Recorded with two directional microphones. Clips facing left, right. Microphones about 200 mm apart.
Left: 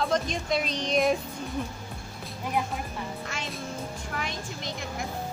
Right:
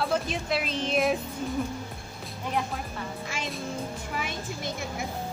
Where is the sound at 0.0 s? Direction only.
5° right (ahead or behind).